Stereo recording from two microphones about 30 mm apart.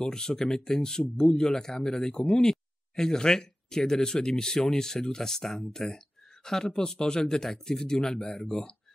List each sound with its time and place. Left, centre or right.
0.0 s speech: left
1.5 s speech: centre